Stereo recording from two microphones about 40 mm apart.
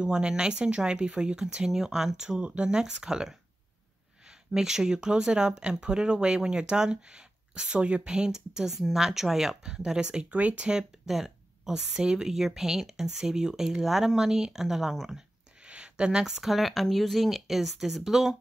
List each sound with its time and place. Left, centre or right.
0.0 s speech: right
2.4 s speech: right
2.8 s speech: centre
4.6 s speech: centre
9.8 s speech: right
11.1 s a sound: centre
11.7 s speech: right
15.6 s a sound: right
16.4 s speech: centre